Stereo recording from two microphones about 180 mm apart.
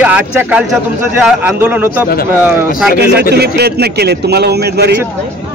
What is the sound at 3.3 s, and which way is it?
A man's voice, 65° right (ahead or behind).